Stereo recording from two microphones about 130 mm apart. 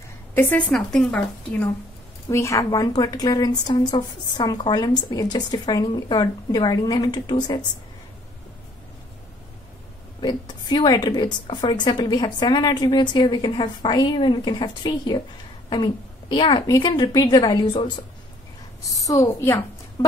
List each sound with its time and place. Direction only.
0.3 s speech: 15° left (ahead or behind)
2.2 s a woman's voice: 25° left (ahead or behind)
10.2 s a woman's voice: 35° left (ahead or behind)